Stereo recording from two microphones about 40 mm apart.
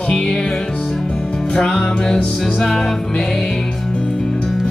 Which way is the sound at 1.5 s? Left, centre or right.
Centre.